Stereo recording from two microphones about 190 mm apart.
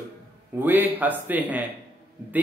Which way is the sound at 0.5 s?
10° right (ahead or behind).